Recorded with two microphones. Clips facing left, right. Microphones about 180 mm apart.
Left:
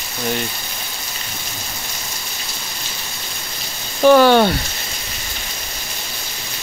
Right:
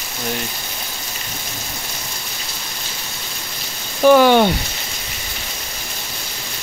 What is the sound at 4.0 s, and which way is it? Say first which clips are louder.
Speech: even; 10° right (ahead or behind).